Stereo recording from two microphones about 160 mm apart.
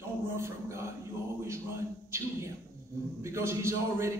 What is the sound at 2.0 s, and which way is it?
A man's voice, 15° right (ahead or behind).